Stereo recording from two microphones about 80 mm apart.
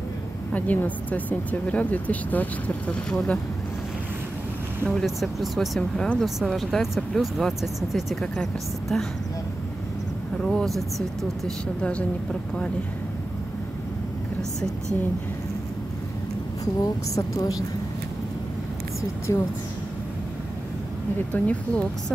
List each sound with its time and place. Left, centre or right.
0.5 s speech: centre
3.1 s speech: centre
4.8 s speech: centre
5.8 s speech: centre
10.4 s speech: centre
16.8 s a woman's voice: left
19.3 s a woman's voice: left
21.3 s speech: centre